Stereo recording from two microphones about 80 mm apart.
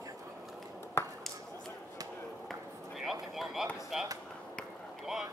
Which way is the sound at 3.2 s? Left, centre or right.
Centre.